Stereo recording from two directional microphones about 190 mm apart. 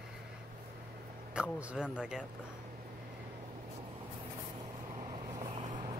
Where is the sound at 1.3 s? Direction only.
5° right (ahead or behind).